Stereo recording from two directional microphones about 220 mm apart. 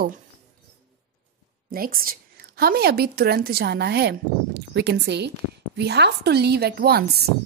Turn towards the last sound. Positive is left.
turn(degrees=-45)  # may be behind; listen again after turning